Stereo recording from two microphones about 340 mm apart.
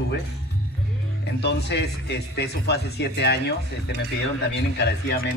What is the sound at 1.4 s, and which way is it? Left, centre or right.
Speech, left.